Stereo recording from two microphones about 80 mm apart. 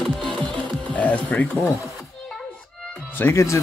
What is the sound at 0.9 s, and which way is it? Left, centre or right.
Speech, left.